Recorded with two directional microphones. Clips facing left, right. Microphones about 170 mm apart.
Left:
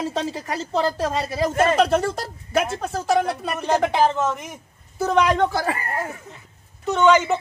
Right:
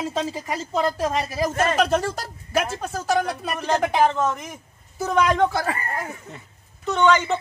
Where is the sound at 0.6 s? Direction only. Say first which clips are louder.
Left 1 dB; 30° left (ahead or behind).